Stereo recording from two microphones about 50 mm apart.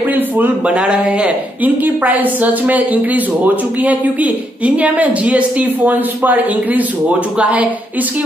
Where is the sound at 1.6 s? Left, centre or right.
Right.